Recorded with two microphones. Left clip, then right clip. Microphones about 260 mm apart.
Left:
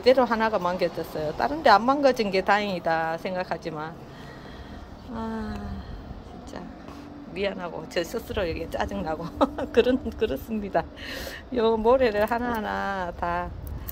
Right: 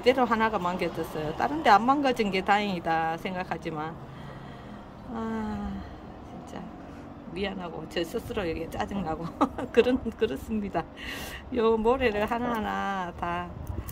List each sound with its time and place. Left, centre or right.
0.0 s speech: centre
5.1 s speech: centre
7.3 s speech: centre